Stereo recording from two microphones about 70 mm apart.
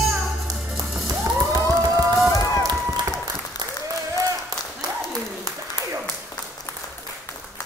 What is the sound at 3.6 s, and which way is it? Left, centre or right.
Applause, right.